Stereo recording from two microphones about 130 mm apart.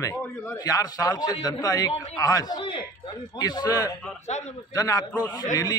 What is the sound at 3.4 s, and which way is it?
A man's voice, 30° left (ahead or behind).